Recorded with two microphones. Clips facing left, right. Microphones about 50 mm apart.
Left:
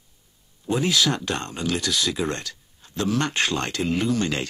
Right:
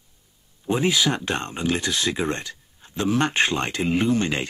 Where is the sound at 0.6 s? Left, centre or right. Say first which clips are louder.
Right 1 dB; right.